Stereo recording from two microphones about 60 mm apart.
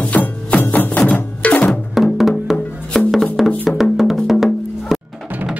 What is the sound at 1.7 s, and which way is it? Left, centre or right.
Music, centre.